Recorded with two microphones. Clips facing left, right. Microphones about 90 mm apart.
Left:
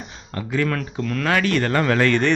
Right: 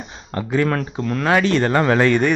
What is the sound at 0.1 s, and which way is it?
Speech, 30° right (ahead or behind).